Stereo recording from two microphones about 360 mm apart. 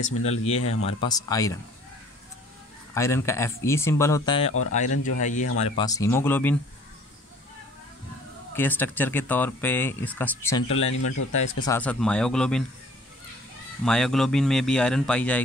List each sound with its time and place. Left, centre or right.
0.1 s speech: left
0.8 s speech: centre
2.9 s speech: centre
5.8 s speech: centre
8.5 s speech: centre
10.9 s speech: left
11.6 s speech: centre
13.8 s speech: centre